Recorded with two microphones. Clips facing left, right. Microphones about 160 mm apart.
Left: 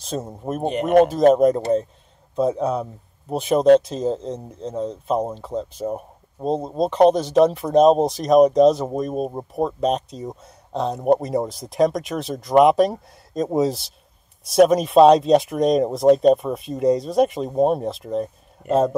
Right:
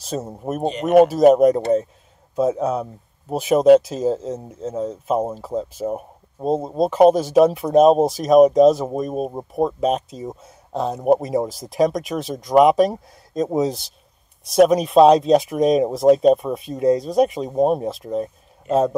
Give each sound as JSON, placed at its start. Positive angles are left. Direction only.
{"t": 0.0, "sound": "speech", "side_deg": 0}
{"t": 0.7, "sound": "speech", "side_deg": 55}
{"t": 0.9, "sound": "speech", "side_deg": -5}